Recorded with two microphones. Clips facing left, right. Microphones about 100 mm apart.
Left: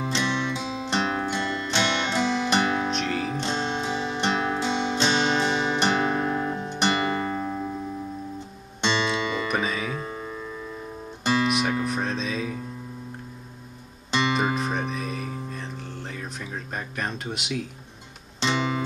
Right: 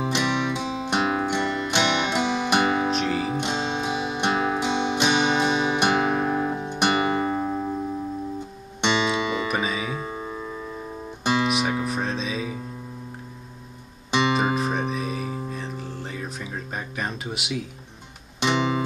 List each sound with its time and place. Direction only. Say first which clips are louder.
0.0 s music: right 2 dB; 15° right (ahead or behind)
2.9 s music: right 3 dB; 5° right (ahead or behind)
3.3 s music: right 1 dB; 15° right (ahead or behind)
8.8 s music: right 2 dB; 10° right (ahead or behind)
11.4 s music: even; 5° right (ahead or behind)
14.3 s music: right 2 dB; 5° right (ahead or behind)
18.4 s music: right 3 dB; 15° right (ahead or behind)